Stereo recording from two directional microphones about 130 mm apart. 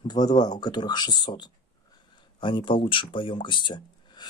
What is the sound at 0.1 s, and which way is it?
Speech, 30° left (ahead or behind).